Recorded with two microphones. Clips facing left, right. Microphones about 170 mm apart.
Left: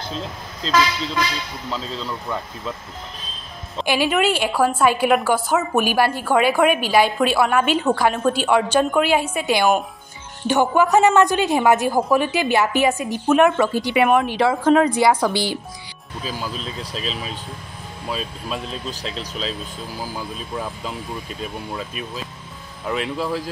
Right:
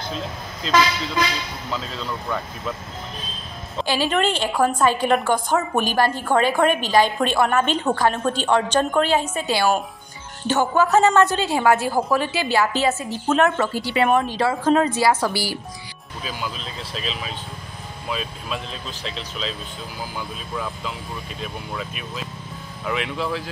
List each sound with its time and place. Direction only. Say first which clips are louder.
3.8 s a woman's voice: left 2 dB; 15° left (ahead or behind)
14.5 s speech: left 2 dB; centre (ahead or behind)
16.3 s speech: left 2 dB; 40° left (ahead or behind)